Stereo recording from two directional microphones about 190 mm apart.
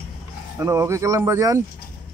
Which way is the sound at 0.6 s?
15° right (ahead or behind).